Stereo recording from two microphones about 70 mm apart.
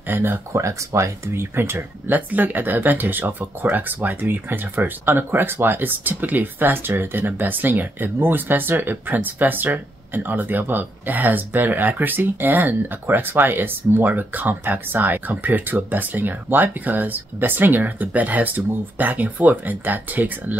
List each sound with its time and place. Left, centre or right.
0.0 s speech: right
0.5 s speech: right